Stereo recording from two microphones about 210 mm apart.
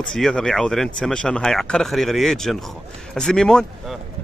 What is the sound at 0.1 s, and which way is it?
Speech, 5° left (ahead or behind).